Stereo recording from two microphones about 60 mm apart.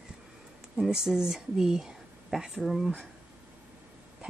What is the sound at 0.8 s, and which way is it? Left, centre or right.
Speech, centre.